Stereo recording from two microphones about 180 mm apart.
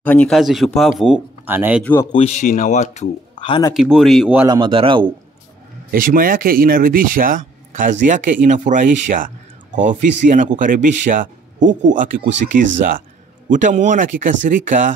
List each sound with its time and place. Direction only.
0.0 s speech: 10° left (ahead or behind); by 1.8 s 10° right (ahead or behind)
1.8 s speech: 10° left (ahead or behind)
2.1 s speech: 40° left (ahead or behind)
3.7 s speech: centre (ahead or behind)
4.5 s speech: 25° right (ahead or behind)
5.9 s speech: 50° right (ahead or behind)